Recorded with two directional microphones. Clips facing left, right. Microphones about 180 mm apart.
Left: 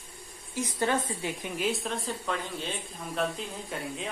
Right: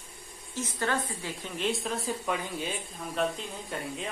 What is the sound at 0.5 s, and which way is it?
Speech, 15° left (ahead or behind).